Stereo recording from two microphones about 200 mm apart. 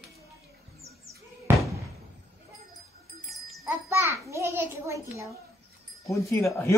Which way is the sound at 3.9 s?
15° right (ahead or behind).